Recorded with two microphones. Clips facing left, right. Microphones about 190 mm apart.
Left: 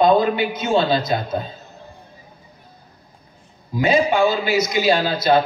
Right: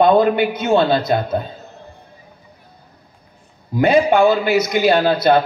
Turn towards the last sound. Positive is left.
turn(degrees=-60)  # may be behind; listen again after turning